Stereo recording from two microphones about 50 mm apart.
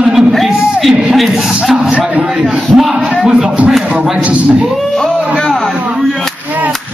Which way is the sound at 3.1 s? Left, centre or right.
Centre.